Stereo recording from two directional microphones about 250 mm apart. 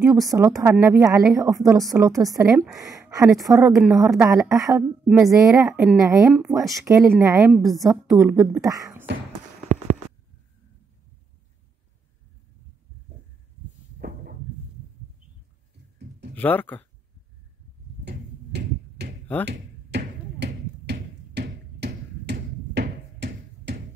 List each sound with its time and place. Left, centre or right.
0.0 s speech: centre
3.8 s speech: centre
13.9 s a sound: right
16.3 s speech: centre
18.0 s tick-tock: right
19.4 s a sound: right